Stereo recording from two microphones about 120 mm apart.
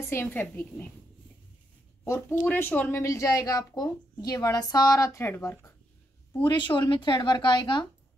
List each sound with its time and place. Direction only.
0.0 s speech: 20° left (ahead or behind)
2.0 s speech: 20° left (ahead or behind)
3.0 s a woman's voice: 25° left (ahead or behind)
6.4 s speech: 40° left (ahead or behind)